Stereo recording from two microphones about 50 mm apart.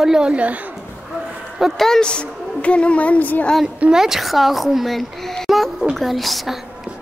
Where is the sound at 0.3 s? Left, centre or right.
Right.